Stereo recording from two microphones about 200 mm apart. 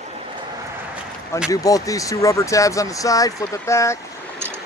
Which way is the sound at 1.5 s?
15° left (ahead or behind).